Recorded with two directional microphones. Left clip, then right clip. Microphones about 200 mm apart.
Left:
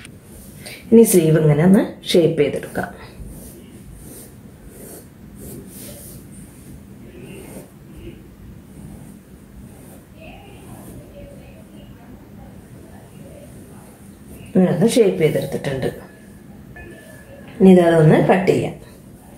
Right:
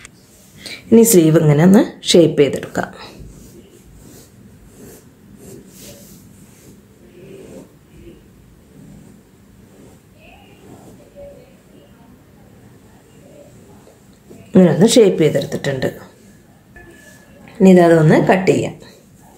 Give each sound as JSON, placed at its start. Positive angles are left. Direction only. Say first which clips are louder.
{"t": 0.8, "sound": "speech", "louder": "right 2 dB", "side_deg": -40}
{"t": 14.5, "sound": "speech", "louder": "right 5 dB", "side_deg": -60}
{"t": 17.6, "sound": "a woman's voice", "louder": "right 2 dB", "side_deg": -35}